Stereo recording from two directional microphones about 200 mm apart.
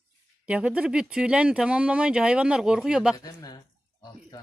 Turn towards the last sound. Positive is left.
turn(degrees=20)  # may be behind; listen again after turning